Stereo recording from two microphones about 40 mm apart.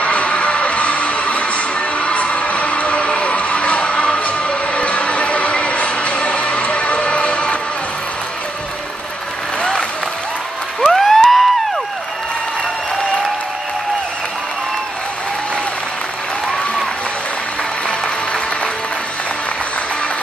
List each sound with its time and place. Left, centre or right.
0.0 s music: left
9.6 s applause: left
10.8 s a sound: centre